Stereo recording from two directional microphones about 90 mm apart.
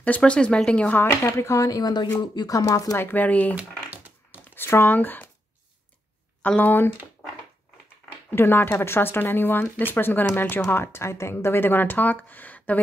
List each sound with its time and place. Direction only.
0.0 s speech: 15° left (ahead or behind)
1.2 s speech: 35° left (ahead or behind)
3.0 s speech: 20° left (ahead or behind)
3.5 s a sound: 20° right (ahead or behind)
4.5 s speech: 25° left (ahead or behind)
6.6 s speech: 20° left (ahead or behind)
8.3 s speech: 25° left (ahead or behind)